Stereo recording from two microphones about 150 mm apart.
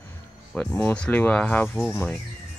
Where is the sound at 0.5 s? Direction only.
10° left (ahead or behind).